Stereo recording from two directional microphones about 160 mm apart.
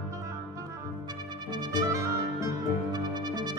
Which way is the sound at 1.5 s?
20° right (ahead or behind).